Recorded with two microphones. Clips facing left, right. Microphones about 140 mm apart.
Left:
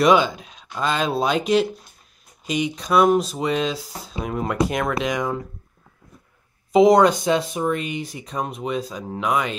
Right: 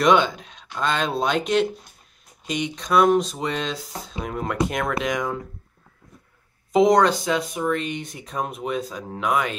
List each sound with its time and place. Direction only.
0.0 s speech: 5° left (ahead or behind)
6.7 s speech: 5° left (ahead or behind)
7.1 s speech: 25° left (ahead or behind)
7.7 s speech: 10° left (ahead or behind)